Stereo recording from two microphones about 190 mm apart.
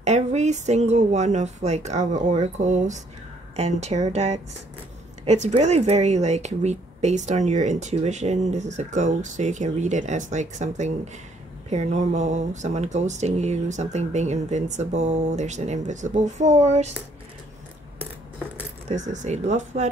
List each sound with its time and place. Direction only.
0.0 s speech: 35° right (ahead or behind)
19.0 s speech: 40° right (ahead or behind)